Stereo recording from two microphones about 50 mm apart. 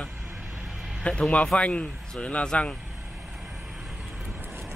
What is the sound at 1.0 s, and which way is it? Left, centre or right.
Speech, left.